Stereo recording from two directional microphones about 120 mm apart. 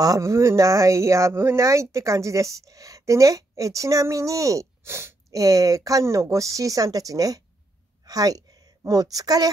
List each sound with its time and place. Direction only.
0.0 s a woman's voice: 25° right (ahead or behind)